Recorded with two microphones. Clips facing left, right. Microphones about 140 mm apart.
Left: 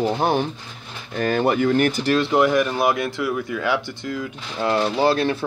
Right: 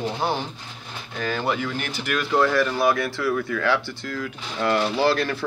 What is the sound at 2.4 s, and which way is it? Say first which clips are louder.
Speech: left 2 dB; 15° left (ahead or behind).